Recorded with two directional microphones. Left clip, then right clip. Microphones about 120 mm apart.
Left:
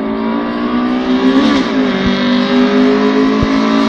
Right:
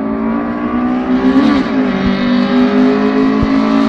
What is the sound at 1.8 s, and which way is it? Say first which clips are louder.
Vehicle: left 1 dB; 40° left (ahead or behind).